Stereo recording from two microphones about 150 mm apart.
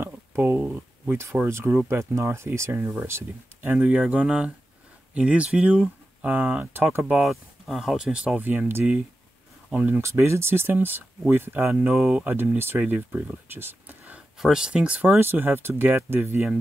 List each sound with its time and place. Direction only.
0.0 s speech: 15° right (ahead or behind)
7.2 s speech: centre (ahead or behind)